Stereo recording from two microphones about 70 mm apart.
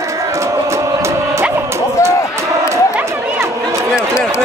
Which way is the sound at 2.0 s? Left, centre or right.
Left.